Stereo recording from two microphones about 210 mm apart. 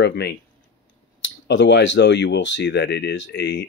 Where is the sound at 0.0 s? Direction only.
55° left (ahead or behind).